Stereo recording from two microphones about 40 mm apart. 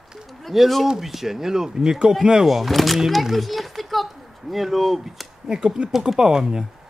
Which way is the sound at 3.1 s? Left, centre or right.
Centre.